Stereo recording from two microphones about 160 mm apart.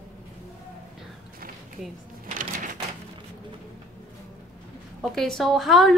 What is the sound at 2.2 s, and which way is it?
Cash register, 55° right (ahead or behind).